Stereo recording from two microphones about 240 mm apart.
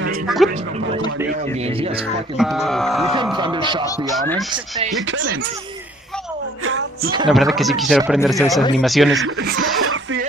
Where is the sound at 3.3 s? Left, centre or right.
Centre.